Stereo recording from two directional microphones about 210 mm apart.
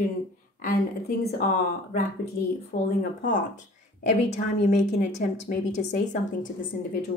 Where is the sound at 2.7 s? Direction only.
40° left (ahead or behind).